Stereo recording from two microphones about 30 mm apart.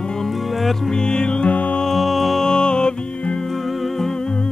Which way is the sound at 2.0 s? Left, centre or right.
Centre.